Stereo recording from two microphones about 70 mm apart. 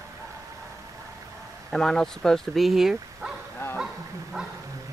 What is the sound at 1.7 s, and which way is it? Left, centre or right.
Speech, centre.